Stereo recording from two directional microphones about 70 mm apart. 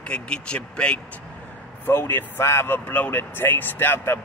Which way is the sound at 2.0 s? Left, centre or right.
Left.